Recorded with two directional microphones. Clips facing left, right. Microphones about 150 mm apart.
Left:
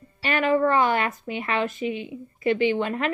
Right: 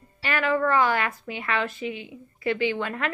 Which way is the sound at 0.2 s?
20° left (ahead or behind).